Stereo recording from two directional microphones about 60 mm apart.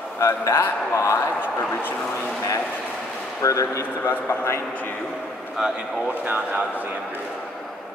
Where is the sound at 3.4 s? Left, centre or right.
Left.